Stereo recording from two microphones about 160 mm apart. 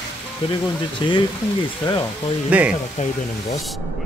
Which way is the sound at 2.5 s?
10° right (ahead or behind).